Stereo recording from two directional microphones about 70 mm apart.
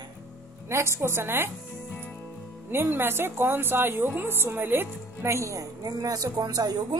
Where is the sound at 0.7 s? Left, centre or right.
Right.